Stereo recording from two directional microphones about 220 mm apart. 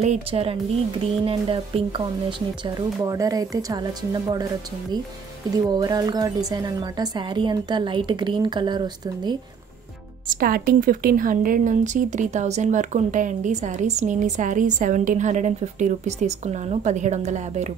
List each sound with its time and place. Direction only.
0.0 s speech: 30° right (ahead or behind)
5.7 s speech: 20° right (ahead or behind)
10.3 s speech: 40° right (ahead or behind)